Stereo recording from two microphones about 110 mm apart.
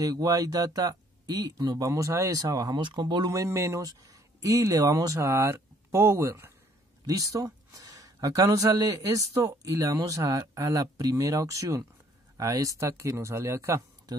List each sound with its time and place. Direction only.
0.0 s speech: 35° right (ahead or behind)
3.3 s speech: 30° right (ahead or behind)